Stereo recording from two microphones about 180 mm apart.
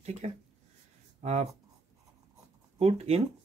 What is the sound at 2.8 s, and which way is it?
Speech, 35° right (ahead or behind).